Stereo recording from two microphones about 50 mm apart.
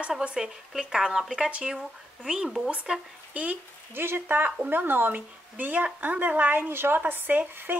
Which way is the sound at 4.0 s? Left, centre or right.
Right.